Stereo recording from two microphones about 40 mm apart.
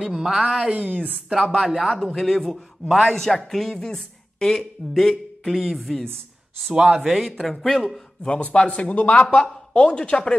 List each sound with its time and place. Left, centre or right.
0.0 s a woman's voice: centre
1.4 s a woman's voice: centre
6.7 s speech: right
7.0 s a woman's voice: centre
7.2 s speech: centre
8.2 s speech: left